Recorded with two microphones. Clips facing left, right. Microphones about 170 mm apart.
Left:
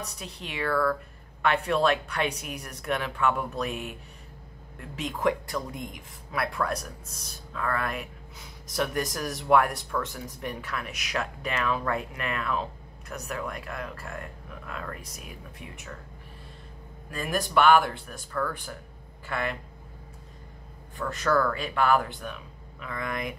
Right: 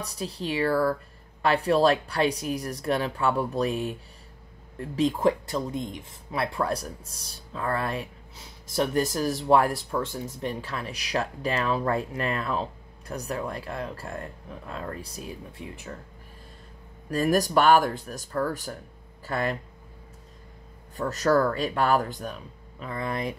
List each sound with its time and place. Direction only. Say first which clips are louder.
0.0 s speech: right 7 dB; 35° right (ahead or behind)
17.1 s speech: right 5 dB; 40° right (ahead or behind)
20.9 s speech: right 3 dB; 40° right (ahead or behind)